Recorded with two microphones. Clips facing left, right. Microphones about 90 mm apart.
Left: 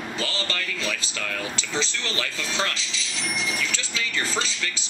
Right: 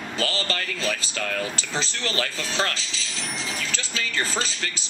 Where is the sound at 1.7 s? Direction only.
40° right (ahead or behind).